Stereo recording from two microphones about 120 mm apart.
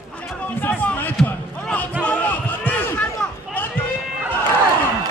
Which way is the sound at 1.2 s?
15° left (ahead or behind).